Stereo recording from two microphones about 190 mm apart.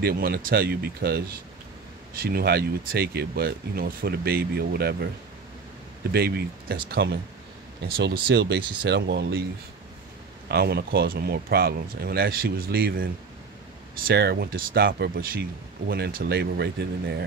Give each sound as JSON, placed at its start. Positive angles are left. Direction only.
{"t": 0.0, "sound": "speech", "side_deg": -55}
{"t": 6.1, "sound": "speech", "side_deg": -55}
{"t": 10.5, "sound": "speech", "side_deg": -55}